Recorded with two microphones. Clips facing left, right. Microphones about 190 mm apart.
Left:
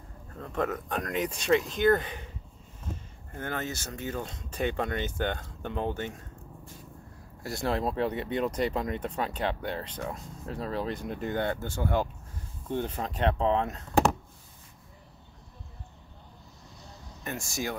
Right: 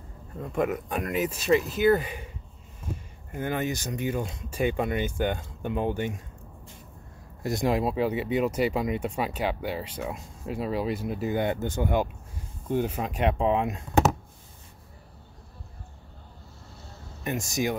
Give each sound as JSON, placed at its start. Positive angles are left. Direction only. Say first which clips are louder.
{"t": 0.4, "sound": "speech", "louder": "right 4 dB", "side_deg": -10}
{"t": 7.4, "sound": "speech", "louder": "right 4 dB", "side_deg": -15}
{"t": 17.2, "sound": "speech", "louder": "right 6 dB", "side_deg": -15}